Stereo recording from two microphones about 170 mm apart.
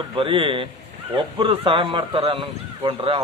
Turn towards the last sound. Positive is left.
turn(degrees=-35)  # may be behind; listen again after turning